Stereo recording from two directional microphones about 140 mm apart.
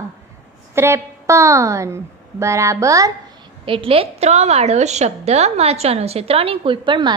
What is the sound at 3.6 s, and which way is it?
A woman's voice, 40° right (ahead or behind).